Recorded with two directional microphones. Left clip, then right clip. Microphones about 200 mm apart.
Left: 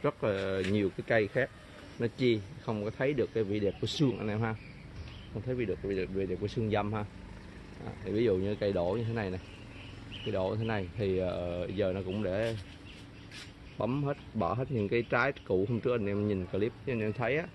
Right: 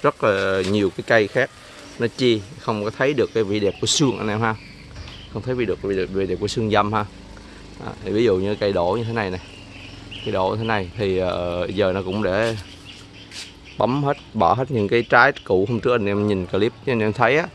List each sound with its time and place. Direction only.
0.0 s speech: 10° right (ahead or behind)
13.7 s speech: 15° right (ahead or behind)